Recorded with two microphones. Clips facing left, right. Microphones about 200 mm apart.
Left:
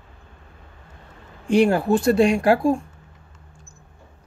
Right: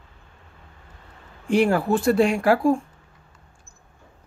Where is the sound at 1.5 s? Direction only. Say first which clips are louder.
Left 2 dB; 20° left (ahead or behind).